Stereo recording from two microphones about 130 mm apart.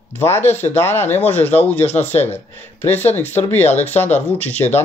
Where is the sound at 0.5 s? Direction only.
15° left (ahead or behind).